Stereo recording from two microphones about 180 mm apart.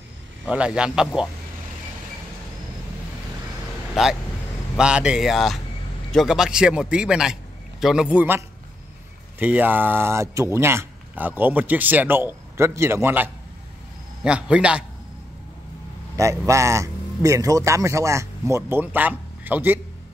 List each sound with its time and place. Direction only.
0.5 s a man's voice: 5° right (ahead or behind)
3.9 s a man's voice: centre (ahead or behind)
16.2 s speech: 15° right (ahead or behind)